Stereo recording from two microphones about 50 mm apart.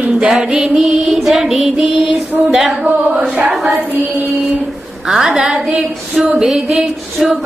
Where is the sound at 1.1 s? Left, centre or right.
Centre.